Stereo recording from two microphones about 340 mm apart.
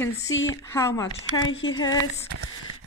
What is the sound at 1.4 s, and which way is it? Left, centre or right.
Speech, left.